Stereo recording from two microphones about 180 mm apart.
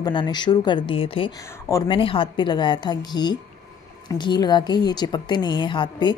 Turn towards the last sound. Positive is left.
turn(degrees=25)  # may be behind; listen again after turning